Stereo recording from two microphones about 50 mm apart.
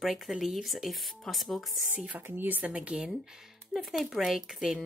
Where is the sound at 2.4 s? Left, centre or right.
Right.